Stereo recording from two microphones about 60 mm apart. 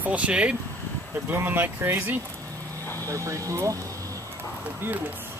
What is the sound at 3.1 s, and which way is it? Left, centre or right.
Speech, right.